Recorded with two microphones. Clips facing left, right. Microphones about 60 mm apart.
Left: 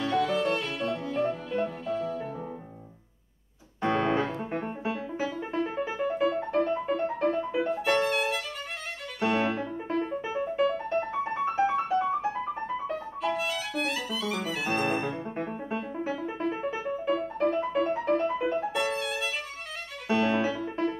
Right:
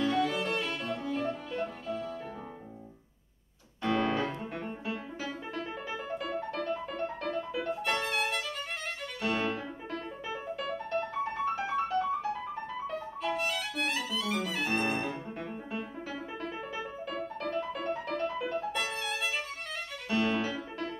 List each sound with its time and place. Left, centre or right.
0.0 s violin: centre
1.2 s music: centre
3.8 s music: left
7.7 s music: centre
9.3 s piano: centre
10.5 s music: left
12.9 s music: centre
15.0 s music: left
18.7 s violin: centre
20.1 s music: centre